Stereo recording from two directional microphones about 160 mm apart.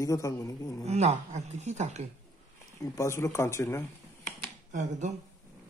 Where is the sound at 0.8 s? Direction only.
45° right (ahead or behind).